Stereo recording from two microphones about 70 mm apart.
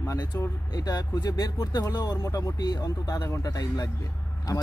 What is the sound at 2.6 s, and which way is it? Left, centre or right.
Speech, left.